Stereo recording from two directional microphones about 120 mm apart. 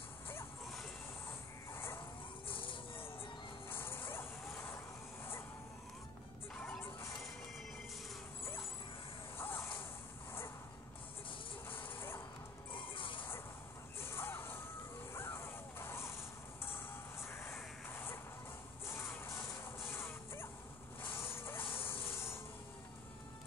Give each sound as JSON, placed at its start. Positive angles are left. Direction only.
{"t": 1.7, "sound": "music", "side_deg": 20}
{"t": 2.4, "sound": "music", "side_deg": 45}
{"t": 3.6, "sound": "music", "side_deg": 20}
{"t": 6.5, "sound": "music", "side_deg": 5}
{"t": 9.4, "sound": "music", "side_deg": 20}
{"t": 12.7, "sound": "music", "side_deg": 45}
{"t": 14.0, "sound": "music", "side_deg": 20}
{"t": 15.1, "sound": "a sound", "side_deg": 20}
{"t": 16.6, "sound": "music", "side_deg": 20}
{"t": 21.1, "sound": "vehicle", "side_deg": 20}
{"t": 21.8, "sound": "insect", "side_deg": 20}